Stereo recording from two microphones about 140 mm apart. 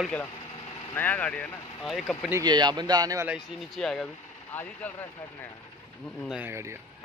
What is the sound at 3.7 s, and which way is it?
Speech, 5° left (ahead or behind).